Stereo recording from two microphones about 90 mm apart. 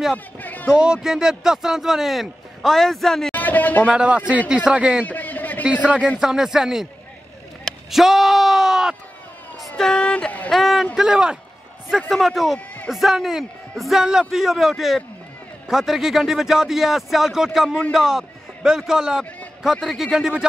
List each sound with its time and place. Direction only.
0.4 s a man's voice: 20° left (ahead or behind)
0.7 s speech: 10° right (ahead or behind)
3.3 s a sound: 20° left (ahead or behind)
3.8 s a man's voice: 10° right (ahead or behind)
5.0 s a sound: 20° left (ahead or behind)
6.1 s speech: 5° right (ahead or behind)
7.6 s a sound: centre (ahead or behind)
9.6 s speech: 5° left (ahead or behind)
10.5 s a man's voice: centre (ahead or behind)
12.5 s a man's voice: 15° left (ahead or behind)
12.9 s speech: 5° right (ahead or behind)